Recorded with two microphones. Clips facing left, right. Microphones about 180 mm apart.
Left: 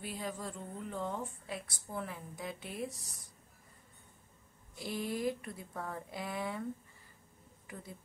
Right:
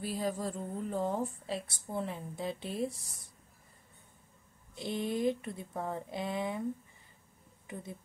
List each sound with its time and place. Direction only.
0.0 s a woman's voice: 35° right (ahead or behind)
4.7 s speech: 20° right (ahead or behind)
7.6 s speech: 25° right (ahead or behind)